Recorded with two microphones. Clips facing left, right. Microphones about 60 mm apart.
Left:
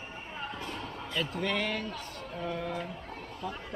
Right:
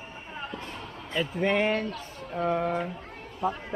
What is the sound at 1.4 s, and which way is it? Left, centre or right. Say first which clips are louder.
Speech: right 9 dB; right.